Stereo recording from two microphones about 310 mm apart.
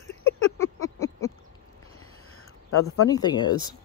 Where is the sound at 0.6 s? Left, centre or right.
Centre.